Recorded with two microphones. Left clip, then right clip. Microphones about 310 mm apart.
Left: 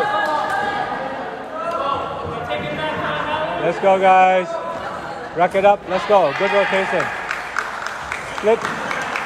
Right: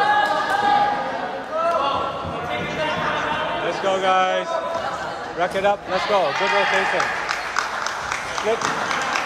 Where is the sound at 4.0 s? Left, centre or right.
Centre.